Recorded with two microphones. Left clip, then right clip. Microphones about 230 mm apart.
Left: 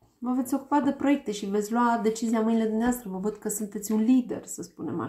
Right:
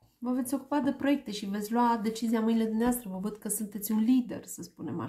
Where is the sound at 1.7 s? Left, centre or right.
Right.